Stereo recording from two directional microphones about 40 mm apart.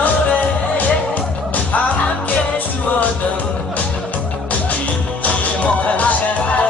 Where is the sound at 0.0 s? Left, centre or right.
Left.